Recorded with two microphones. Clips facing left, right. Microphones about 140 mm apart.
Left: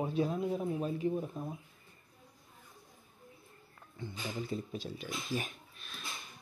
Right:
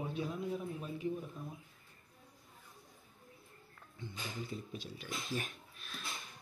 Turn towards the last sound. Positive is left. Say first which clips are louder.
# right 1 dB
turn(degrees=0)  # may be behind; listen again after turning